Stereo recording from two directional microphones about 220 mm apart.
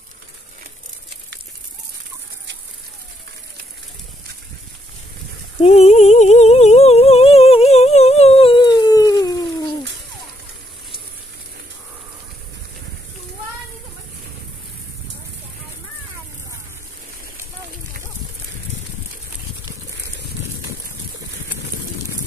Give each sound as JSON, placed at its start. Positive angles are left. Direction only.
{"t": 5.6, "sound": "humming", "side_deg": 30}